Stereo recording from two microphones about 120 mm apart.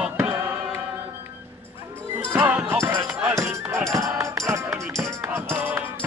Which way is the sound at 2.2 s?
20° right (ahead or behind).